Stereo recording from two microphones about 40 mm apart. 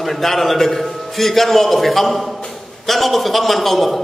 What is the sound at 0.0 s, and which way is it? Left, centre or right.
A man's voice, centre.